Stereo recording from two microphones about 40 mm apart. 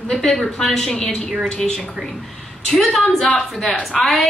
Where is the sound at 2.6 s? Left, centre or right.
Centre.